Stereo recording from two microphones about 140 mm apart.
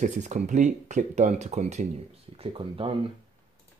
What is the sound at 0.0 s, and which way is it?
Speech, 65° right (ahead or behind).